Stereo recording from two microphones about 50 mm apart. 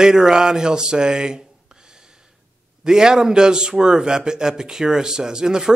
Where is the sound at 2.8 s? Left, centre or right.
Centre.